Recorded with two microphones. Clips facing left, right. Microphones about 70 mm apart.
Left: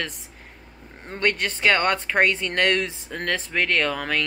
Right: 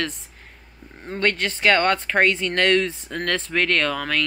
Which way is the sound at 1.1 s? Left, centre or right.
Centre.